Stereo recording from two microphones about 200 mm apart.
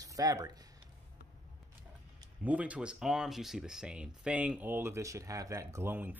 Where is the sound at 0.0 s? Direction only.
20° right (ahead or behind).